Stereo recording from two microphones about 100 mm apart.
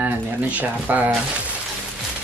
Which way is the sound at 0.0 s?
15° right (ahead or behind).